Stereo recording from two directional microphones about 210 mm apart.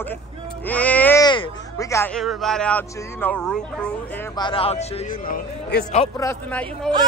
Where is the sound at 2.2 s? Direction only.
Centre (ahead or behind).